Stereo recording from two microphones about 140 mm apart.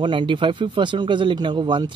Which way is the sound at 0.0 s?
35° right (ahead or behind).